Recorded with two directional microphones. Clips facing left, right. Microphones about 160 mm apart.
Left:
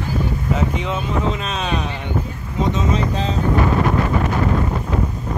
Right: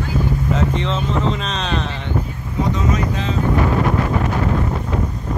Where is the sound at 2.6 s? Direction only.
25° left (ahead or behind).